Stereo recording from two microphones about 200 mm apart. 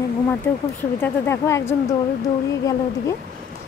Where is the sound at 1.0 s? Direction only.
10° left (ahead or behind).